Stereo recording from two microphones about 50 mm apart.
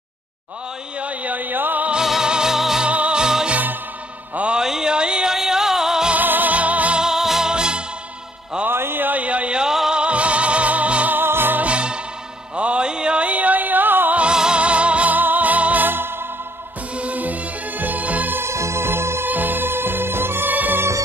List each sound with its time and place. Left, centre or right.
0.9 s a sound: right
2.0 s music: centre
2.9 s music: right
6.1 s music: right
7.0 s music: centre
8.6 s a sound: right; by 9.8 s centre
9.8 s music: centre
11.1 s music: right
11.6 s music: right
14.3 s music: centre; by 16.3 s right
16.9 s music: right
18.3 s music: right
19.2 s music: right